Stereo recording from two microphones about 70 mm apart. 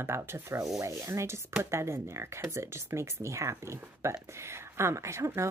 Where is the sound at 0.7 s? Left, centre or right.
Right.